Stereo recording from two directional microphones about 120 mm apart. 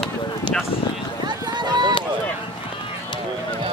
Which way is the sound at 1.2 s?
40° right (ahead or behind).